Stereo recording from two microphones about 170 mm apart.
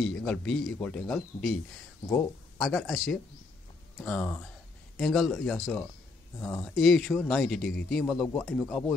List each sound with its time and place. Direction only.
0.0 s speech: 5° left (ahead or behind)
2.0 s speech: 15° left (ahead or behind)
2.6 s speech: centre (ahead or behind)